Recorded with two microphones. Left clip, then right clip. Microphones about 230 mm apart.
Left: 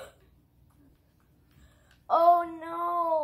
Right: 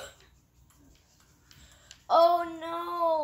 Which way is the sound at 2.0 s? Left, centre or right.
Centre.